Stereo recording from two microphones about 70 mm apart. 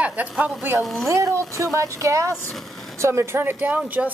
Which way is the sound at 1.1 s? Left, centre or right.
Right.